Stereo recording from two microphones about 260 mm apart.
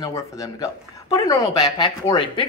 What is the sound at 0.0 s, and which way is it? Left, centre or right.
Speech, centre.